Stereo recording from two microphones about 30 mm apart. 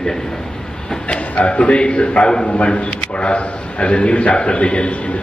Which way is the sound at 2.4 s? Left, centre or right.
Left.